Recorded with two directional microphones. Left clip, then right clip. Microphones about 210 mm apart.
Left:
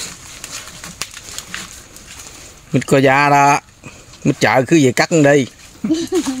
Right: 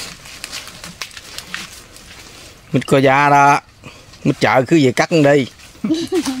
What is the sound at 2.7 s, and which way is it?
Speech, 5° left (ahead or behind).